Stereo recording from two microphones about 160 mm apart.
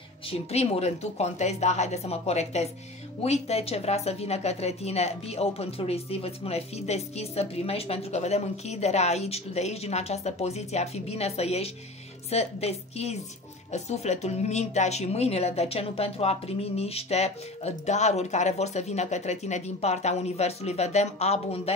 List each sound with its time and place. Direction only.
0.3 s speech: 40° left (ahead or behind)